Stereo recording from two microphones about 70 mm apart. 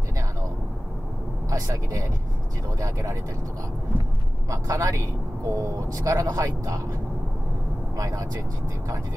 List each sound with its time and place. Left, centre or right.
1.5 s speech: right
4.5 s speech: right
7.9 s speech: right